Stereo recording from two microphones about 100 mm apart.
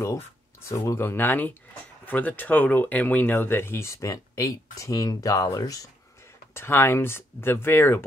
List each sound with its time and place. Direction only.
0.0 s speech: 30° left (ahead or behind)
6.5 s speech: 25° left (ahead or behind)